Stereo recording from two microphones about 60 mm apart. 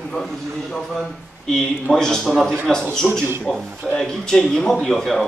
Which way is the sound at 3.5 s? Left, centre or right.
Centre.